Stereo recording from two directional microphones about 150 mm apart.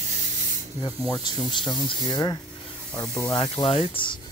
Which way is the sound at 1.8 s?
30° left (ahead or behind).